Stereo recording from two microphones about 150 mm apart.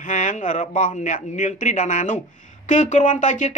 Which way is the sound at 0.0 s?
60° left (ahead or behind).